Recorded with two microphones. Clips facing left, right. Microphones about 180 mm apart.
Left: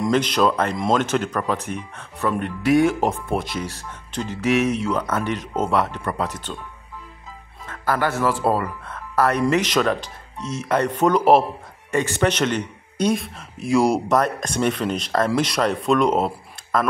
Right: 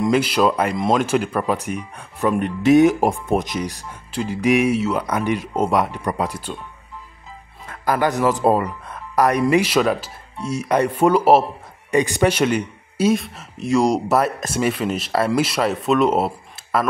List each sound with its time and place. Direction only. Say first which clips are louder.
0.0 s speech: right 2 dB; 10° right (ahead or behind)
7.6 s speech: right 3 dB; 15° right (ahead or behind)